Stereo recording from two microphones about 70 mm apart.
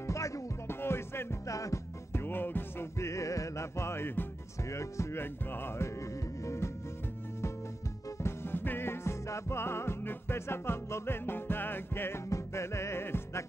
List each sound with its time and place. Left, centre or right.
0.0 s music: left
0.7 s music: left
1.5 s music: left
2.1 s music: left
3.0 s music: left
4.6 s music: left
8.2 s music: left